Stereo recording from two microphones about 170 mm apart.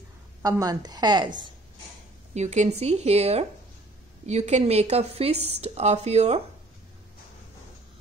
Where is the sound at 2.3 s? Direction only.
45° right (ahead or behind).